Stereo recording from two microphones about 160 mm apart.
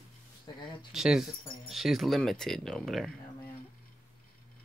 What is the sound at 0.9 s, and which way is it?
Speech, 5° right (ahead or behind).